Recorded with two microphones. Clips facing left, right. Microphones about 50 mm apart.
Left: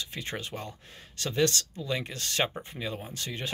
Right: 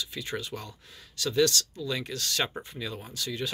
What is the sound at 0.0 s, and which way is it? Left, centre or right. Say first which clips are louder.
Speech: right 1 dB; left.